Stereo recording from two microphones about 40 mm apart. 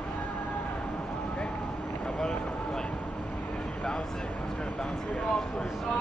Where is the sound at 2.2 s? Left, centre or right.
Left.